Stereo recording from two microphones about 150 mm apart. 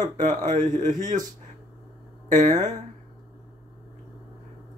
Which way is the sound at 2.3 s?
55° right (ahead or behind).